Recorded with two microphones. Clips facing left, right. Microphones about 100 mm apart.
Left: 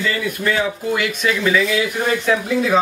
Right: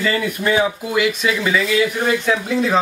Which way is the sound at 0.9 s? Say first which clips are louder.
Right 4 dB; centre (ahead or behind).